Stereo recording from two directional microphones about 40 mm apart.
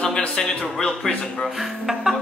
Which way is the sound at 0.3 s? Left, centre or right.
Centre.